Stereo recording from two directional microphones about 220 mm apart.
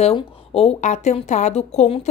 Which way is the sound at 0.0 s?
25° left (ahead or behind).